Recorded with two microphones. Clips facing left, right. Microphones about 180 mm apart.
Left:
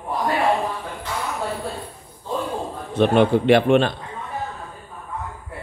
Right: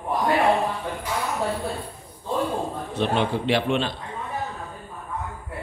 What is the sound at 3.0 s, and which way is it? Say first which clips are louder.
Speech: left 7 dB; 55° left (ahead or behind).